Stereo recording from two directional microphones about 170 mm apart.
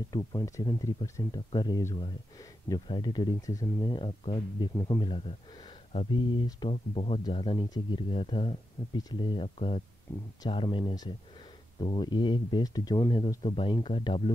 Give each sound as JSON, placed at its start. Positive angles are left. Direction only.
{"t": 0.1, "sound": "speech", "side_deg": 25}
{"t": 10.1, "sound": "speech", "side_deg": 15}
{"t": 10.4, "sound": "speech", "side_deg": 30}